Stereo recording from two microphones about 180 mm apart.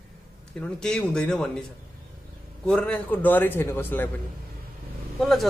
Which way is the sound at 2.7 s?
5° left (ahead or behind).